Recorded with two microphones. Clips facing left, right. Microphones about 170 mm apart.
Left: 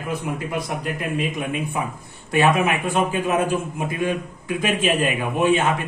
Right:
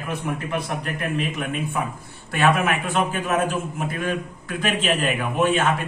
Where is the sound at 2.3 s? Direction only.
15° left (ahead or behind).